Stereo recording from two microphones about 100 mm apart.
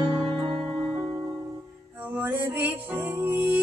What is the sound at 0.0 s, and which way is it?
Music, centre (ahead or behind).